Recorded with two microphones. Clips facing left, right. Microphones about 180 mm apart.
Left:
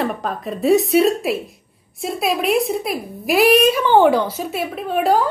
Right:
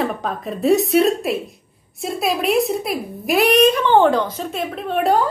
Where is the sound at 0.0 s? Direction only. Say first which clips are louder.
Even; centre (ahead or behind).